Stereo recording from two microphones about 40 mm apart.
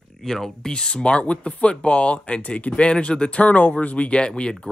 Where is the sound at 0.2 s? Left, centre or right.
Centre.